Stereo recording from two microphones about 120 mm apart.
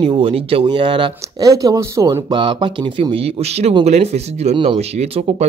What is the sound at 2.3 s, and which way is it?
Speech, 40° right (ahead or behind).